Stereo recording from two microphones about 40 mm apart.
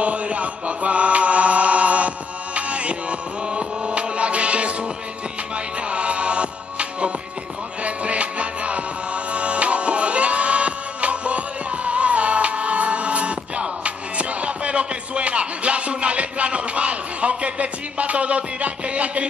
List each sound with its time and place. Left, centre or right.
0.0 s chant: right
5.9 s music: right